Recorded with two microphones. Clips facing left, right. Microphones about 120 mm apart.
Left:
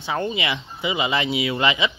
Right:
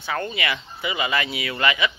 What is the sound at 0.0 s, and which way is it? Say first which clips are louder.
Speech: left 2 dB; 20° left (ahead or behind).